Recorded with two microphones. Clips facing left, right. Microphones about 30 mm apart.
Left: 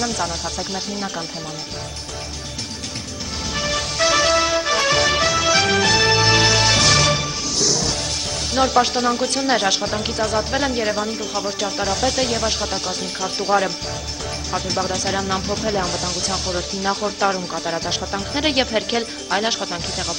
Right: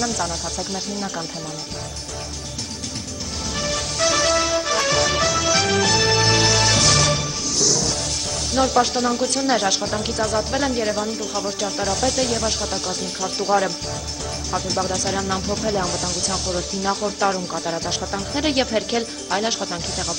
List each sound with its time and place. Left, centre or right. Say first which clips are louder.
0.0 s speech: left 1 dB; centre
3.5 s music: left 3 dB; centre
8.5 s speech: left 1 dB; centre